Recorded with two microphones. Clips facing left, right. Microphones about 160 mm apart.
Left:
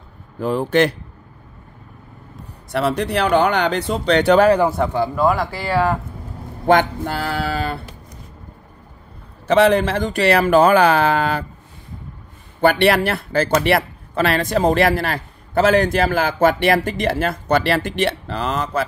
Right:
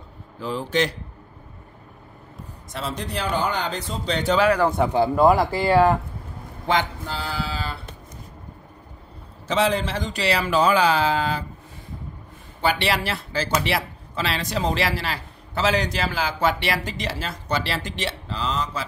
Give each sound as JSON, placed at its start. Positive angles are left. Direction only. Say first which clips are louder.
{"t": 0.4, "sound": "speech", "louder": "left 7 dB", "side_deg": 55}
{"t": 2.7, "sound": "speech", "louder": "left 10 dB", "side_deg": 65}
{"t": 4.9, "sound": "speech", "louder": "right 1 dB", "side_deg": -25}
{"t": 6.7, "sound": "speech", "louder": "left 8 dB", "side_deg": 60}
{"t": 9.5, "sound": "speech", "louder": "left 8 dB", "side_deg": 60}
{"t": 12.6, "sound": "speech", "louder": "left 8 dB", "side_deg": 55}